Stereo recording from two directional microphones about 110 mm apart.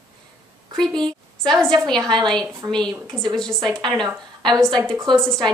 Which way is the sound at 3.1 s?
5° left (ahead or behind).